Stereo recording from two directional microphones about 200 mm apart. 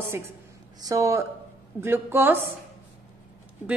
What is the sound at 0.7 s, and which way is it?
A woman's voice, 15° right (ahead or behind).